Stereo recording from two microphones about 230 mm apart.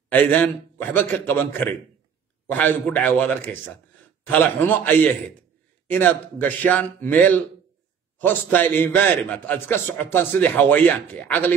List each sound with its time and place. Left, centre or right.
0.1 s a man's voice: centre